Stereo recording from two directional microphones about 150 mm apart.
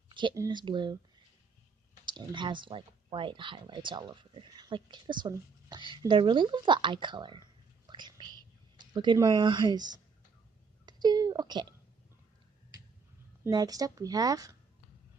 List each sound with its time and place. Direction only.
0.1 s a sound: 30° right (ahead or behind)
0.5 s speech: 30° right (ahead or behind)
2.0 s speech: 30° right (ahead or behind)
7.9 s whispering: 30° right (ahead or behind)
8.9 s a woman's voice: 30° right (ahead or behind)
13.4 s speech: 25° right (ahead or behind)